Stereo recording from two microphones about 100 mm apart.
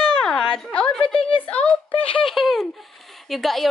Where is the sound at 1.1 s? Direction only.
60° left (ahead or behind).